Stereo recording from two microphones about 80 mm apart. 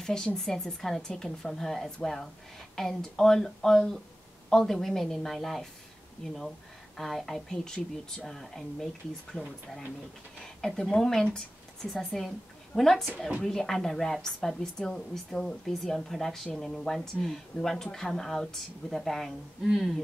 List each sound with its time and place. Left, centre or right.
0.0 s speech: centre
9.3 s speech: centre
10.6 s speech: centre